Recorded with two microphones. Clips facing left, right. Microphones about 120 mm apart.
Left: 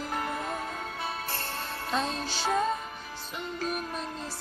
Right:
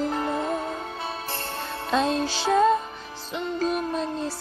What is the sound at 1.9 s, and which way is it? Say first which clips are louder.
Music: right 8 dB; 90° right.